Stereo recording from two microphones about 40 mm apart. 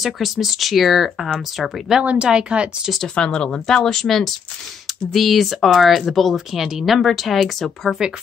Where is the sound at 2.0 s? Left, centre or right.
Right.